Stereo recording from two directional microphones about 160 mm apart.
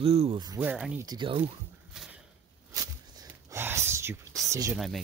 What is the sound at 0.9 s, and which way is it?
Speech, 25° right (ahead or behind).